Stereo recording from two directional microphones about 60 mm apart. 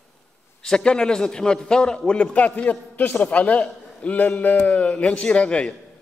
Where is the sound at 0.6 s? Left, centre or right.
Centre.